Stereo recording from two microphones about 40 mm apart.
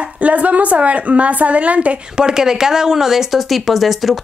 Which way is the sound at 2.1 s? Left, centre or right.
Centre.